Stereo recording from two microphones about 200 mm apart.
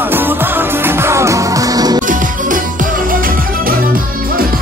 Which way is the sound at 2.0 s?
40° right (ahead or behind).